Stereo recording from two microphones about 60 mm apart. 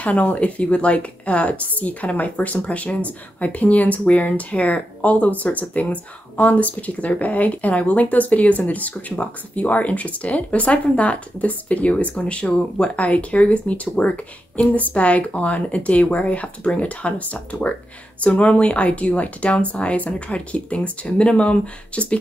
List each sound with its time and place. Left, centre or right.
0.0 s a woman's voice: left